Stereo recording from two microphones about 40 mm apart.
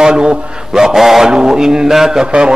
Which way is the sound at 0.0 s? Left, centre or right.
Right.